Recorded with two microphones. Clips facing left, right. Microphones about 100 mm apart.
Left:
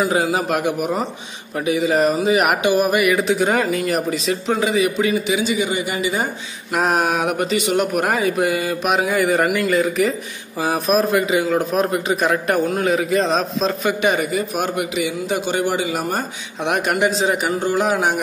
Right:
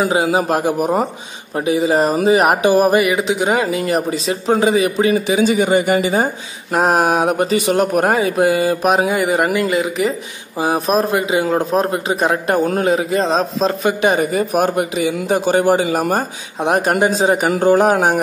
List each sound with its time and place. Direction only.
0.0 s speech: 30° right (ahead or behind)
5.4 s speech: 50° right (ahead or behind)
6.1 s speech: 30° right (ahead or behind); by 16.3 s 45° right (ahead or behind)
16.6 s speech: 35° right (ahead or behind)
17.4 s speech: 55° right (ahead or behind)